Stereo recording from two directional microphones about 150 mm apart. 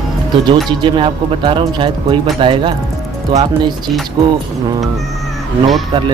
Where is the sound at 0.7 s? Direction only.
35° right (ahead or behind).